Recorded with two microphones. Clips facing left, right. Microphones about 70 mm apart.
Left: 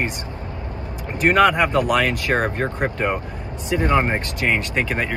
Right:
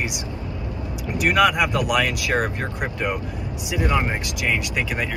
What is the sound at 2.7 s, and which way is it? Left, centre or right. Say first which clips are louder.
Speech: left 3 dB; left.